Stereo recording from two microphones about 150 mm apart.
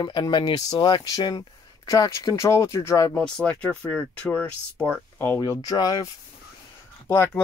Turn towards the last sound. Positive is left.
turn(degrees=15)  # may be behind; listen again after turning